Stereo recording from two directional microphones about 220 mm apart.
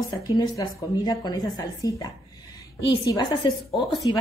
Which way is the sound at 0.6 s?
20° left (ahead or behind).